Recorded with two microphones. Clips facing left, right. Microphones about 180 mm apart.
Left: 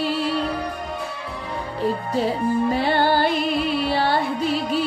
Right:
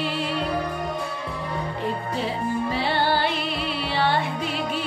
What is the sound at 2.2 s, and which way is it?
Music, 45° left (ahead or behind).